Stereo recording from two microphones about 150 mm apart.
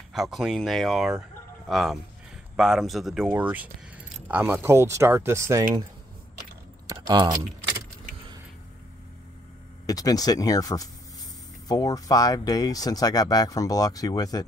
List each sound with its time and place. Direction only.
0.1 s speech: centre (ahead or behind); by 5.7 s 20° right (ahead or behind)
6.9 s keys jangling: 30° right (ahead or behind)
9.8 s speech: 25° left (ahead or behind)